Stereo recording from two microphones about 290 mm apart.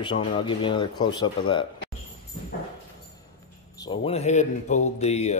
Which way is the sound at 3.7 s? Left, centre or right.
Centre.